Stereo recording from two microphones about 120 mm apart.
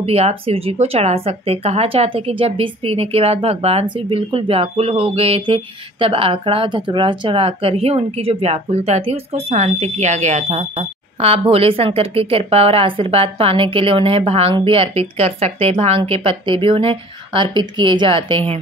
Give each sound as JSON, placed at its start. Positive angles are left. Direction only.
{"t": 0.0, "sound": "speech", "side_deg": -55}
{"t": 16.0, "sound": "speech", "side_deg": -45}